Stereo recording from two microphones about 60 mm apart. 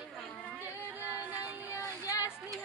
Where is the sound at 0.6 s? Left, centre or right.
Right.